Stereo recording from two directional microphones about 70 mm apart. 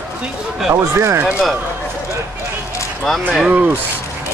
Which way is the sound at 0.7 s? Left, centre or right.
Right.